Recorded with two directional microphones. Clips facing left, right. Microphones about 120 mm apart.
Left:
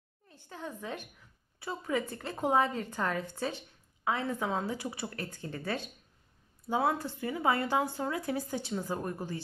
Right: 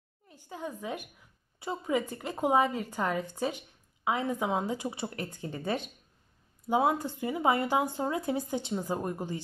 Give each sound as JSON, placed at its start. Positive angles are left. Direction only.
{"t": 0.3, "sound": "speech", "side_deg": -10}